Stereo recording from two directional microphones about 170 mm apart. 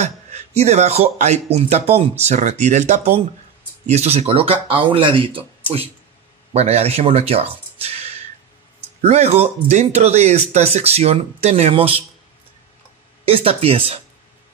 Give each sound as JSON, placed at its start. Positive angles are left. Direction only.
{"t": 0.0, "sound": "speech", "side_deg": -40}
{"t": 13.2, "sound": "speech", "side_deg": -35}